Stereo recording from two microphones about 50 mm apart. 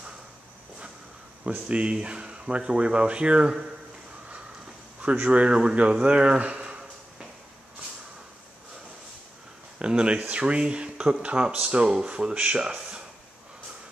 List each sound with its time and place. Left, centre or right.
1.7 s speech: right
5.0 s speech: right
9.8 s speech: centre